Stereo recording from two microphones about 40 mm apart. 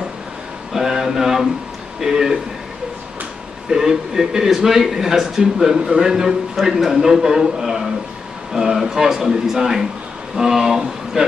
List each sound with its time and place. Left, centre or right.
0.7 s a sound: centre
2.0 s speech: centre
3.7 s speech: centre
8.8 s a man's voice: centre